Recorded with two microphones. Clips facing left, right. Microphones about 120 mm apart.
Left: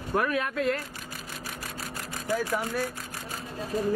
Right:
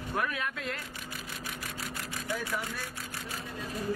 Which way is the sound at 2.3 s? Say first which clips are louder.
Left 8 dB; 40° left (ahead or behind).